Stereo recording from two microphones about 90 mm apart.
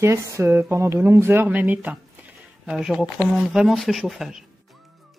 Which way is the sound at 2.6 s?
5° right (ahead or behind).